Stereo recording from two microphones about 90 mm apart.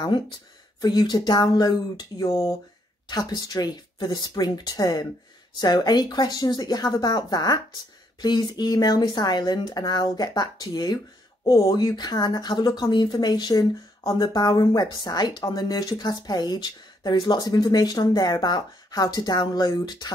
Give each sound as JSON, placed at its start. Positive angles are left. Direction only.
{"t": 0.7, "sound": "speech", "side_deg": 50}